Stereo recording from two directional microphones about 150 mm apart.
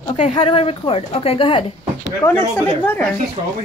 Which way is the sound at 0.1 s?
45° left (ahead or behind).